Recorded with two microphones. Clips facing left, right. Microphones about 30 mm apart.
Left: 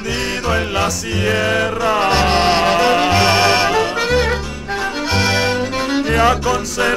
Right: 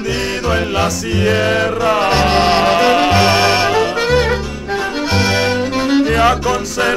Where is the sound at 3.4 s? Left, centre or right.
Centre.